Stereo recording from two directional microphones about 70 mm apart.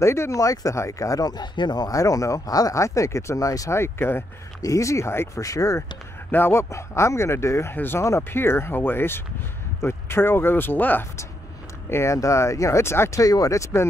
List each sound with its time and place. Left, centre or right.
0.0 s speech: left
3.7 s speech: left
4.6 s speech: left
5.4 s speech: left
6.3 s speech: left
7.7 s speech: left
11.9 s speech: left
13.2 s speech: left